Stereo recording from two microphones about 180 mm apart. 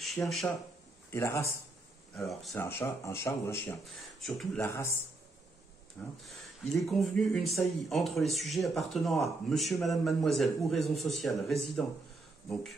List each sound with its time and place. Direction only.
1.1 s speech: 15° left (ahead or behind)
2.1 s speech: centre (ahead or behind)
2.5 s speech: 15° left (ahead or behind)
3.9 s speech: centre (ahead or behind)
4.6 s speech: 15° left (ahead or behind)
6.2 s speech: centre (ahead or behind)